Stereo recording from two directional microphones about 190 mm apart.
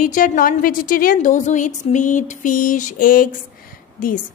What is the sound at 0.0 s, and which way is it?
A woman's voice, 45° left (ahead or behind).